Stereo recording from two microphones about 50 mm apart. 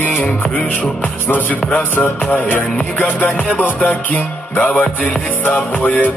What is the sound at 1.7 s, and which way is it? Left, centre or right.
Music, left.